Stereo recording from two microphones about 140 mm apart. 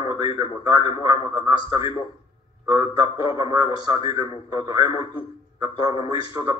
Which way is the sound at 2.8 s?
40° left (ahead or behind).